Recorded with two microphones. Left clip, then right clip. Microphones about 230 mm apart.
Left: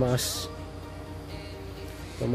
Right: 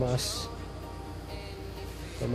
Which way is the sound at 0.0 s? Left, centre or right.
Left.